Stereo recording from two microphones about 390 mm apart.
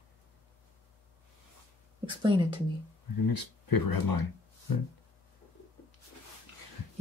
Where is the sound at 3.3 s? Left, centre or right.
Left.